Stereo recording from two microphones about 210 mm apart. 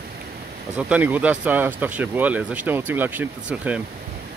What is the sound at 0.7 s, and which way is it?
Speech, 5° right (ahead or behind).